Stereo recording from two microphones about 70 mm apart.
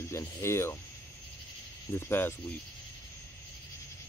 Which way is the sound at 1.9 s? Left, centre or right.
Left.